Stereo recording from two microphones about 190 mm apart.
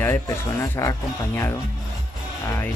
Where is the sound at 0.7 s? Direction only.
15° left (ahead or behind).